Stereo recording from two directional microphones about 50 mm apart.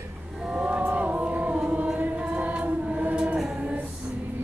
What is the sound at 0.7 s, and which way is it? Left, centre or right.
Music, right.